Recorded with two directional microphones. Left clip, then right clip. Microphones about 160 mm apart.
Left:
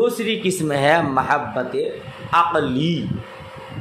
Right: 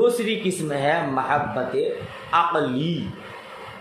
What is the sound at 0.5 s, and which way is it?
A man's voice, 40° left (ahead or behind).